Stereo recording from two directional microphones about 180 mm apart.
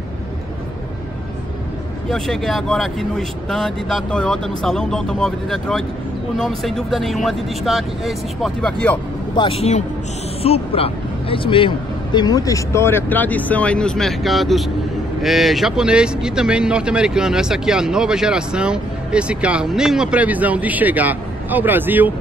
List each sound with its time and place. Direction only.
2.0 s speech: centre (ahead or behind)
9.3 s a man's voice: 30° left (ahead or behind); by 22.1 s 10° right (ahead or behind)